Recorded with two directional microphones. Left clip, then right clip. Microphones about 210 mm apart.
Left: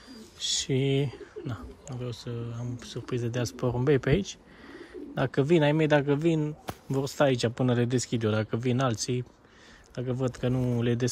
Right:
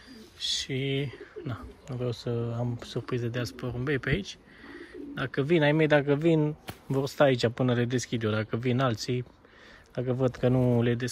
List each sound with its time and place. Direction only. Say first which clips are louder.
0.4 s speech: left 2 dB; 35° left (ahead or behind); by 3.2 s 5° left (ahead or behind)
3.2 s speech: left 2 dB; 25° left (ahead or behind); by 11.0 s 10° left (ahead or behind)